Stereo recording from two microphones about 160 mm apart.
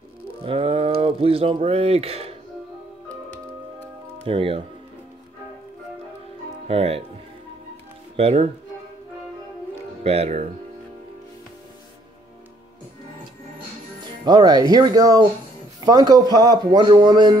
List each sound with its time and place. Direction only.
0.4 s speech: 35° right (ahead or behind)
4.2 s speech: 35° right (ahead or behind)
6.7 s speech: 40° right (ahead or behind)
8.2 s speech: 40° right (ahead or behind)
10.0 s speech: 40° right (ahead or behind)
14.2 s speech: 25° right (ahead or behind)